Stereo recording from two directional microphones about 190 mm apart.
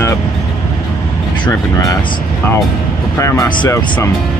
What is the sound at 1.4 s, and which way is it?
Speech, 20° left (ahead or behind).